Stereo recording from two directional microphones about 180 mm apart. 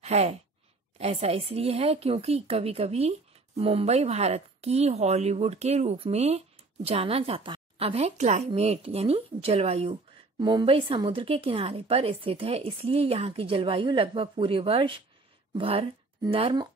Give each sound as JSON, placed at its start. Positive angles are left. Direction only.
{"t": 0.0, "sound": "sigh", "side_deg": -35}
{"t": 0.9, "sound": "a woman's voice", "side_deg": -35}